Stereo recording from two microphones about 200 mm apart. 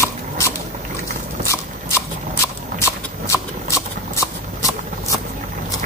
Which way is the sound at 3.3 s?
15° left (ahead or behind).